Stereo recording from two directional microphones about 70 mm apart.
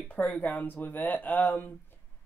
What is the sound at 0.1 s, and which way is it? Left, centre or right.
Speech, left.